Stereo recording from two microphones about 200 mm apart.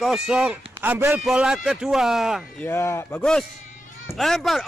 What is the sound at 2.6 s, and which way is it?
A man's voice, 15° left (ahead or behind).